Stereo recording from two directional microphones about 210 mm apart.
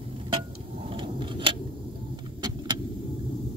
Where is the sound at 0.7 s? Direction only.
25° right (ahead or behind).